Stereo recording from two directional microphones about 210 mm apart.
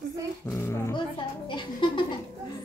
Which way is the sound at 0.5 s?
15° left (ahead or behind).